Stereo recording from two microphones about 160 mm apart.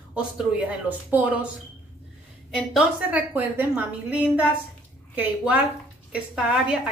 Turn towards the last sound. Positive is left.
turn(degrees=-5)  # may be behind; listen again after turning